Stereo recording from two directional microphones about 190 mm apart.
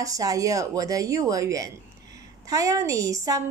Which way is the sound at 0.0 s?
20° right (ahead or behind).